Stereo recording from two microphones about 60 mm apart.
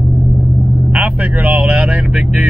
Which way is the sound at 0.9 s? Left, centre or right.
Right.